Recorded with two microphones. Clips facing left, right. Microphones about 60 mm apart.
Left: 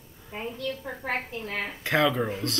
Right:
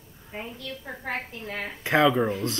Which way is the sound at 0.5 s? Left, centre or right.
Left.